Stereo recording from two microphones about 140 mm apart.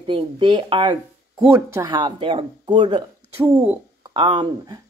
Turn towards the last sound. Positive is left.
turn(degrees=-30)  # may be behind; listen again after turning